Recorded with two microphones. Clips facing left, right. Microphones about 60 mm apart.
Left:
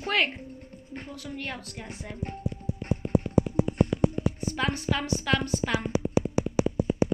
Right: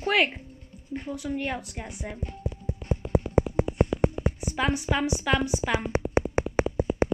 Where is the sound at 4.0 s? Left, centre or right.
Right.